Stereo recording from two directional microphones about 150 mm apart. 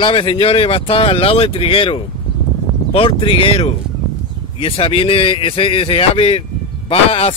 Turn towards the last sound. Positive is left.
turn(degrees=40)  # may be behind; listen again after turning